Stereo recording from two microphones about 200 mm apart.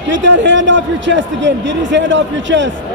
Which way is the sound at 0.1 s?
65° right (ahead or behind).